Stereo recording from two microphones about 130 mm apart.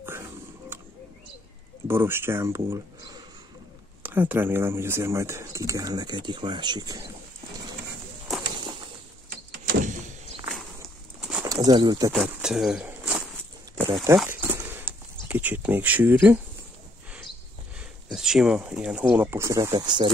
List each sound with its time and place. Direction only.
1.9 s speech: 20° right (ahead or behind); by 7.0 s 35° right (ahead or behind)
9.8 s a sound: 80° right
11.1 s bird: 5° right (ahead or behind)
11.4 s speech: 30° right (ahead or behind)
12.1 s speech: 5° right (ahead or behind)
14.1 s a sound: 15° right (ahead or behind)
15.2 s speech: 15° right (ahead or behind)
18.1 s speech: 5° right (ahead or behind); by 19.7 s 20° right (ahead or behind)
19.7 s speech: 35° right (ahead or behind)